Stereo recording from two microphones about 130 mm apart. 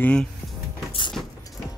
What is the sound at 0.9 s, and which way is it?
Vehicle, 40° left (ahead or behind).